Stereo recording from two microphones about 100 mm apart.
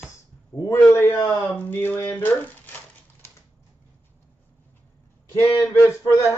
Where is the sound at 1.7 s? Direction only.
20° left (ahead or behind).